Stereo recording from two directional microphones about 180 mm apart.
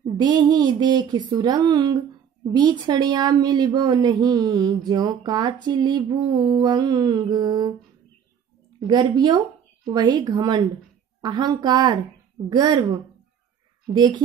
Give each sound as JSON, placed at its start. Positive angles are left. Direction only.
{"t": 0.0, "sound": "speech", "side_deg": -25}
{"t": 8.8, "sound": "speech", "side_deg": -25}